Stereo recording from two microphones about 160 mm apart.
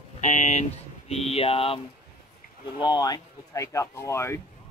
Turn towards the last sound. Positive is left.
turn(degrees=15)  # may be behind; listen again after turning